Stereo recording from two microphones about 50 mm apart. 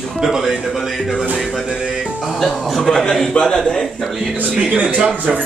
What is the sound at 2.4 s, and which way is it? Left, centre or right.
A man's voice, centre.